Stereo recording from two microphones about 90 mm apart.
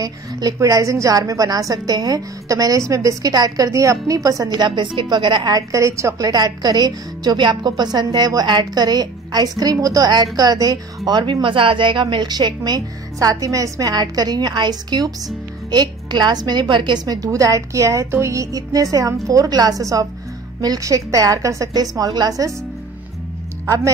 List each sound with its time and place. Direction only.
0.0 s a woman's voice: 40° right (ahead or behind); by 5.5 s 60° right (ahead or behind)
5.5 s a woman's voice: 35° right (ahead or behind)
11.1 s a woman's voice: 60° right (ahead or behind)
11.4 s a woman's voice: 75° right (ahead or behind); by 22.5 s 45° right (ahead or behind)